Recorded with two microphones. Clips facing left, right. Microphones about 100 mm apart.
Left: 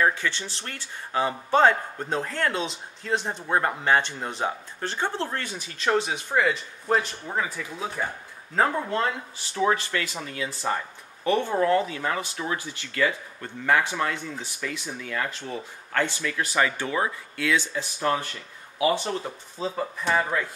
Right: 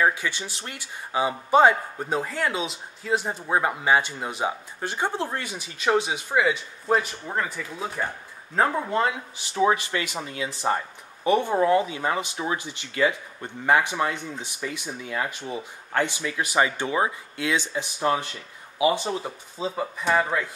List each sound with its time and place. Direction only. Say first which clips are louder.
0.0 s speech: right 1 dB; 10° right (ahead or behind)